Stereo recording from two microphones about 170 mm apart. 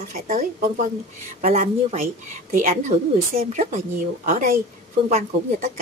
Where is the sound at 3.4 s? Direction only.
40° right (ahead or behind).